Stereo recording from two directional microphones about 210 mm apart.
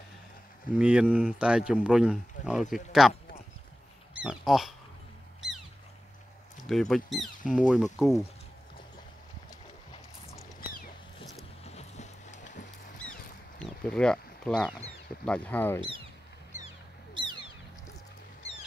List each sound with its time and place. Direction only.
0.7 s speech: 5° right (ahead or behind)
6.7 s speech: centre (ahead or behind)
11.6 s music: 30° left (ahead or behind)
13.6 s a sound: 5° left (ahead or behind)
15.2 s speech: 5° left (ahead or behind)
17.1 s a sound: 20° right (ahead or behind)